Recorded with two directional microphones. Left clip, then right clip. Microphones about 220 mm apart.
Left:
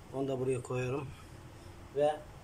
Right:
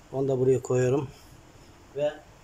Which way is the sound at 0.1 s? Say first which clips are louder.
Right 10 dB; 25° right (ahead or behind).